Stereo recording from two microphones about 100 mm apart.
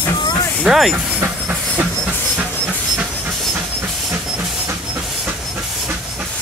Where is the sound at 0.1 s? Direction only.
45° left (ahead or behind).